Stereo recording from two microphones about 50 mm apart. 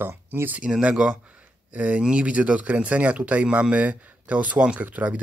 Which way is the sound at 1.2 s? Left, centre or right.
Right.